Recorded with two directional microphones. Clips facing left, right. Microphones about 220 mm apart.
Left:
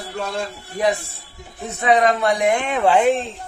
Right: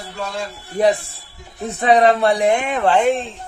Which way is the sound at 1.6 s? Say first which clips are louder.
Right 3 dB; 35° right (ahead or behind).